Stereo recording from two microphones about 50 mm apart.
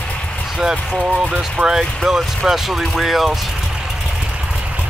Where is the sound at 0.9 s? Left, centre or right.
Right.